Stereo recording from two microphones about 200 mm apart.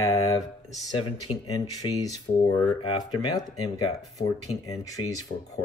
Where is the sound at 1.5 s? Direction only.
15° left (ahead or behind).